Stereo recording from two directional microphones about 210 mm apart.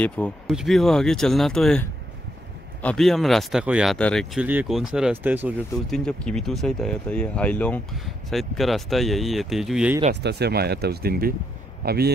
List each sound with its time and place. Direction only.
0.0 s speech: centre (ahead or behind)
5.9 s speech: 5° left (ahead or behind)
10.2 s speech: 50° right (ahead or behind)